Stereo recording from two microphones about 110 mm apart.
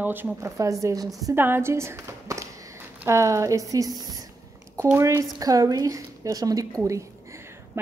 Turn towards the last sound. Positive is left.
turn(degrees=-20)  # may be behind; listen again after turning